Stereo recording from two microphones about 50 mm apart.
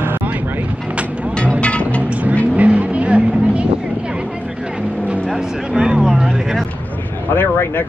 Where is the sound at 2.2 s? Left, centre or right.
Right.